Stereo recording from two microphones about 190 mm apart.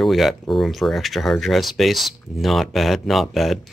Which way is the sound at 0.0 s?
Centre (ahead or behind).